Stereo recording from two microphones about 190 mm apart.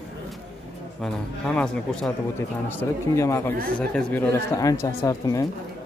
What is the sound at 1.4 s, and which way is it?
Speech, 5° left (ahead or behind).